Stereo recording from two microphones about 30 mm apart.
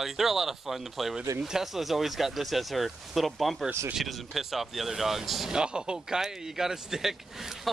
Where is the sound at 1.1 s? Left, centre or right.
Centre.